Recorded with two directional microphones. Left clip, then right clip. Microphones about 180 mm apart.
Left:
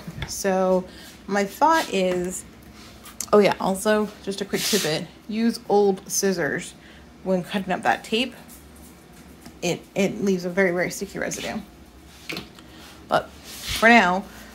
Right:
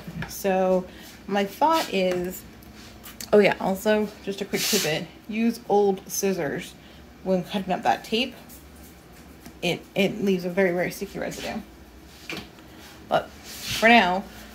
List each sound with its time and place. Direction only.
0.4 s a woman's voice: 15° left (ahead or behind)
9.7 s a woman's voice: 10° left (ahead or behind)
11.1 s speech: 30° left (ahead or behind)
13.7 s a woman's voice: 15° left (ahead or behind)